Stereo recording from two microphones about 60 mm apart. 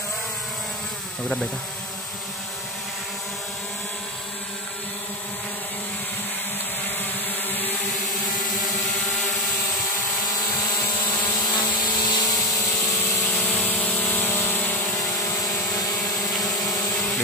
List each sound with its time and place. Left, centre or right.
10.5 s a sound: left
11.4 s vehicle: left
13.3 s a sound: left
14.6 s helicopter: left
15.0 s vehicle: left
16.4 s vacuum cleaner: left